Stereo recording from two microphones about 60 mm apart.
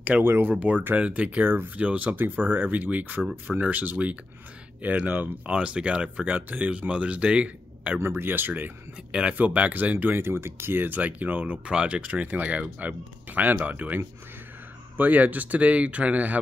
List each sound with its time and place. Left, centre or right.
0.2 s speech: right
1.4 s speech: right
1.8 s speech: right
8.0 s speech: right
9.9 s speech: right
11.6 s speech: centre